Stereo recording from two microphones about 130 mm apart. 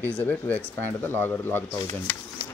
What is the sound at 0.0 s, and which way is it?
Speech, 10° left (ahead or behind).